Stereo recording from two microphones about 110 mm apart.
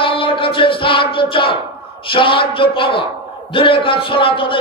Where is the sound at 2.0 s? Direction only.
50° left (ahead or behind).